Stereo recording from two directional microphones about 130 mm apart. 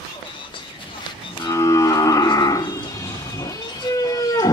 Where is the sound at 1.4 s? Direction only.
25° left (ahead or behind).